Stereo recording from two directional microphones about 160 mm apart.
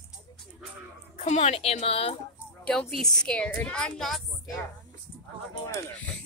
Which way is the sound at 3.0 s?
5° left (ahead or behind).